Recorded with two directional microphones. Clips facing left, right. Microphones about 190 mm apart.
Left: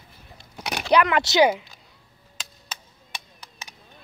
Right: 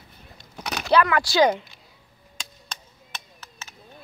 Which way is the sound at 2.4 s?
10° left (ahead or behind).